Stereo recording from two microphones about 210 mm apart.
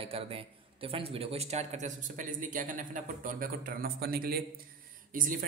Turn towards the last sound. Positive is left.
turn(degrees=-40)  # may be behind; listen again after turning